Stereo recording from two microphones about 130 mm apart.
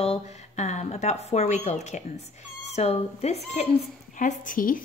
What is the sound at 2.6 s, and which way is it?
Speech, 55° left (ahead or behind).